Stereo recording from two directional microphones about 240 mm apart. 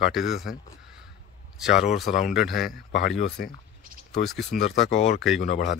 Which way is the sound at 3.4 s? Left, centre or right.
Left.